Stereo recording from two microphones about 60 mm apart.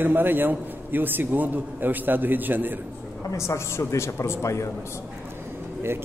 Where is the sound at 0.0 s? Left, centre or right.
Right.